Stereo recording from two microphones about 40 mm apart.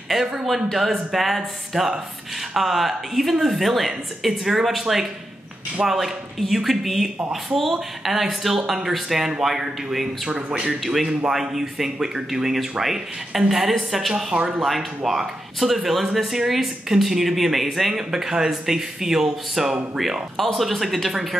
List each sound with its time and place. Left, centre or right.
0.1 s speech: centre
10.3 s speech: right
10.7 s speech: centre